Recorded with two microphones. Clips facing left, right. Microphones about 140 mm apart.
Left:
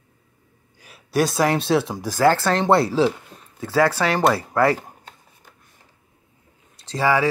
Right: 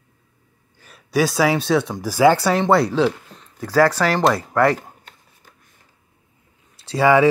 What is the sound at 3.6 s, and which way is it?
Speech, 30° left (ahead or behind).